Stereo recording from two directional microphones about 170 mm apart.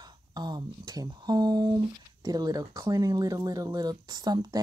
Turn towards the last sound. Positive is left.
turn(degrees=-25)  # may be behind; listen again after turning